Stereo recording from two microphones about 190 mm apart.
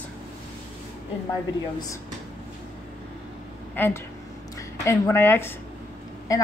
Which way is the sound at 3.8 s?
10° left (ahead or behind).